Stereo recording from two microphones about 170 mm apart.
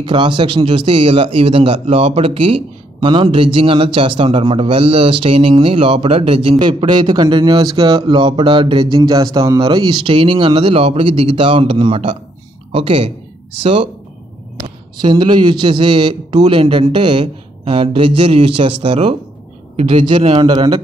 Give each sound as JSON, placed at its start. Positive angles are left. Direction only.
{"t": 0.0, "sound": "a man's voice", "side_deg": -30}
{"t": 15.0, "sound": "a man's voice", "side_deg": -25}
{"t": 20.1, "sound": "a man's voice", "side_deg": -30}